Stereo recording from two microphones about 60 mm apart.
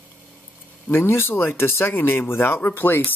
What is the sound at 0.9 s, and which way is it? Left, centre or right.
Speech, left.